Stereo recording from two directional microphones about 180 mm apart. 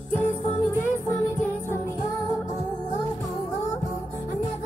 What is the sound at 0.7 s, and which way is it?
Music, 15° left (ahead or behind).